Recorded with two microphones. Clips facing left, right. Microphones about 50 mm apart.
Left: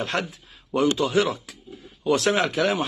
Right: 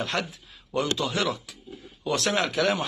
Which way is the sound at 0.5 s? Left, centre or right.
Left.